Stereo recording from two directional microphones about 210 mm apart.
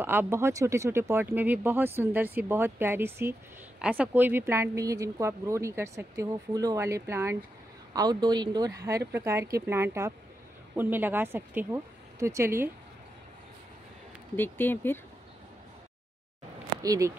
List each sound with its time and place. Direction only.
0.0 s speech: 10° right (ahead or behind)
14.3 s speech: 10° left (ahead or behind)
16.8 s speech: 15° right (ahead or behind)